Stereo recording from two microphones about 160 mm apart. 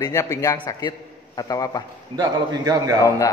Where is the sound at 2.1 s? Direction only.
25° right (ahead or behind).